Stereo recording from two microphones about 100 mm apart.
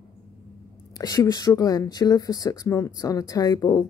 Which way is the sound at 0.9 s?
35° left (ahead or behind).